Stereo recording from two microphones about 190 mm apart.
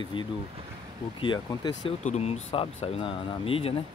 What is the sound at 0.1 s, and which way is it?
Speech, 25° left (ahead or behind).